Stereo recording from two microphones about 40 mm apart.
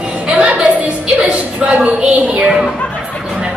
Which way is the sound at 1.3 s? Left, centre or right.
Right.